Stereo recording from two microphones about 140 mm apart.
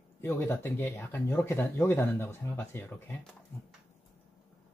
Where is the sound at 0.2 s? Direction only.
15° left (ahead or behind).